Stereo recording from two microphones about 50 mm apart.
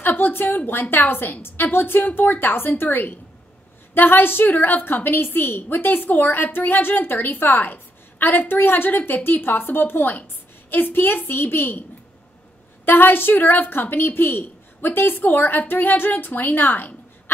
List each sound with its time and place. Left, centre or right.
0.0 s a woman's voice: left
12.8 s a woman's voice: left